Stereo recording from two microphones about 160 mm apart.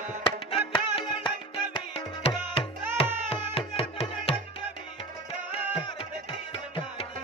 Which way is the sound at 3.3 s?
40° left (ahead or behind).